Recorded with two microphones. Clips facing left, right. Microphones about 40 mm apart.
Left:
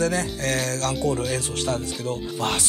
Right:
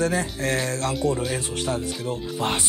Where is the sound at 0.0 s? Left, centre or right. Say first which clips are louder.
Even; right.